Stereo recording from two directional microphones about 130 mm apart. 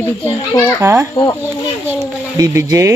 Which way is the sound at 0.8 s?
20° right (ahead or behind).